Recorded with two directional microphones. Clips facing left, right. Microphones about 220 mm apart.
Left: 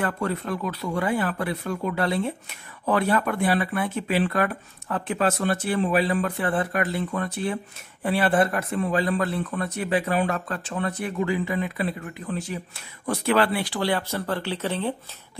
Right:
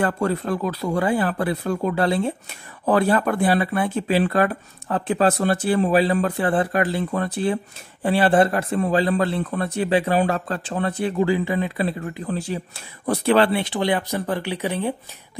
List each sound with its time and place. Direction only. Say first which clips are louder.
0.0 s speech: right 5 dB; 35° right (ahead or behind); by 15.0 s 15° right (ahead or behind)